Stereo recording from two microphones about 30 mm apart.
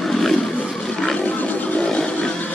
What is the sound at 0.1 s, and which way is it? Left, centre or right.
Wild animals, centre.